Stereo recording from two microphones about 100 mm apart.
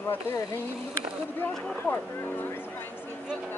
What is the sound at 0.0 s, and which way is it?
Speech, 25° left (ahead or behind).